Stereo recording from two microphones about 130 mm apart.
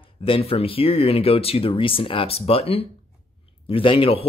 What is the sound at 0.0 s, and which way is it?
Speech, 45° left (ahead or behind).